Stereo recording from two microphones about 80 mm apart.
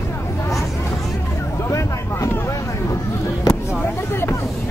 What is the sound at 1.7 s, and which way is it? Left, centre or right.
Vehicle, left.